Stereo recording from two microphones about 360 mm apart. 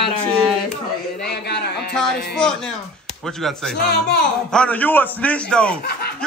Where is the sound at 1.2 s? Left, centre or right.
Left.